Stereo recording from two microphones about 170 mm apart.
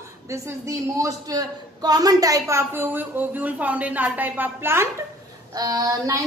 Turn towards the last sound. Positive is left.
turn(degrees=-20)  # may be behind; listen again after turning